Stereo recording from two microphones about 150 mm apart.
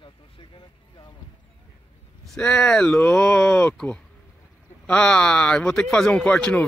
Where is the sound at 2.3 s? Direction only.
5° left (ahead or behind).